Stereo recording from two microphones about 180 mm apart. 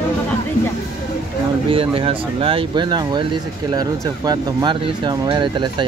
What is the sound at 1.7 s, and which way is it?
Speech, 30° right (ahead or behind).